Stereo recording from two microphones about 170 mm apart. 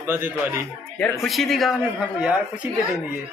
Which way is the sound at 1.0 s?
Centre (ahead or behind).